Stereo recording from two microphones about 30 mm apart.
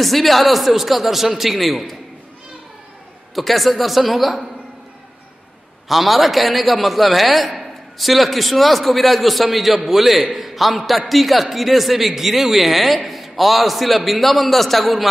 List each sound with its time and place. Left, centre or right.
0.0 s a man's voice: centre
3.3 s a man's voice: centre
5.9 s a man's voice: centre